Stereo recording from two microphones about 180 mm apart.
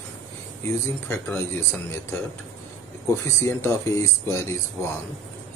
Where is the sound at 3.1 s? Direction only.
15° left (ahead or behind).